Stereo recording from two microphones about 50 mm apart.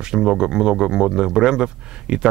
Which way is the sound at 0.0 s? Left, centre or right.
Centre.